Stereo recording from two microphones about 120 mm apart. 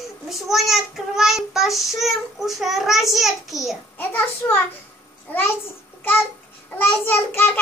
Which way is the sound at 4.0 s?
15° left (ahead or behind).